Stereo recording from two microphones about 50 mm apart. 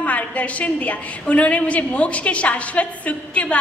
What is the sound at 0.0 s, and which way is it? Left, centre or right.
A woman's voice, left.